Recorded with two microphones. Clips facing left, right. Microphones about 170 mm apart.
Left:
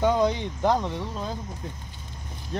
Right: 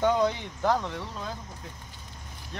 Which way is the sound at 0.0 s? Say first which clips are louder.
Left 2 dB; 15° left (ahead or behind).